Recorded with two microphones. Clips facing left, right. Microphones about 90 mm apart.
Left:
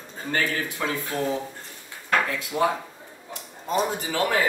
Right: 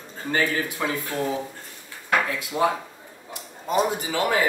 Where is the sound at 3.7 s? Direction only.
15° right (ahead or behind).